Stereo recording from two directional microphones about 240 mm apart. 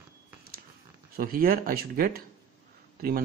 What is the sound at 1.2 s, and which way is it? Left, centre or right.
Speech, right.